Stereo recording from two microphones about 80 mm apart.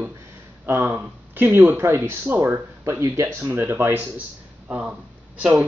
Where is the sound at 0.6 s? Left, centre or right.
Right.